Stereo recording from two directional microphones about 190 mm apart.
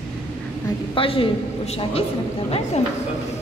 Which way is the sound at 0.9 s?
30° left (ahead or behind).